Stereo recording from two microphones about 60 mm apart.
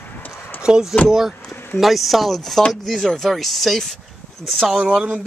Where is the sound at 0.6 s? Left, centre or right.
Centre.